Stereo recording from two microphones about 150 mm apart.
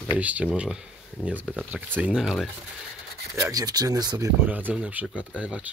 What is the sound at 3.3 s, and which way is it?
Speech, 20° right (ahead or behind).